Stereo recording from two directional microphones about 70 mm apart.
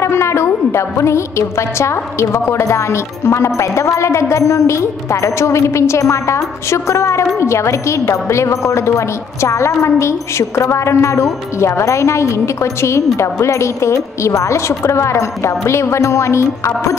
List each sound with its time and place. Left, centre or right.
0.0 s music: left
1.8 s a woman's voice: left